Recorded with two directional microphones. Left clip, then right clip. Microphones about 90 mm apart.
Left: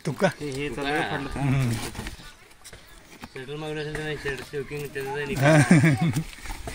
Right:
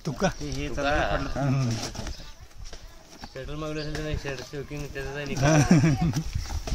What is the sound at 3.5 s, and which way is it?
Speech, 70° right (ahead or behind).